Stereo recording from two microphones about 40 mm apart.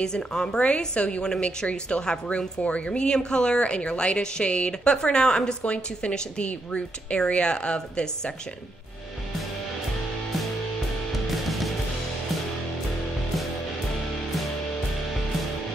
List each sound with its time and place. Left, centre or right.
0.0 s a woman's voice: centre
1.7 s a woman's voice: left
11.2 s music: centre